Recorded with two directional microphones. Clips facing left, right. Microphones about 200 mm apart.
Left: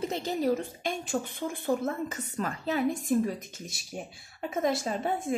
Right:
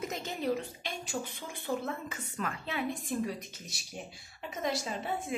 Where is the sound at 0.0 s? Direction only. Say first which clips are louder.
Left 6 dB; 30° left (ahead or behind).